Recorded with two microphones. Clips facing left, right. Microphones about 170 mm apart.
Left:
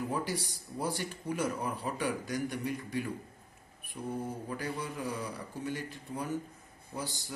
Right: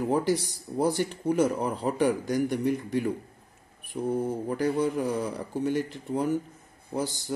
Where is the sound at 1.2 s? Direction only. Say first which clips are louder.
Right 9 dB; 75° right (ahead or behind).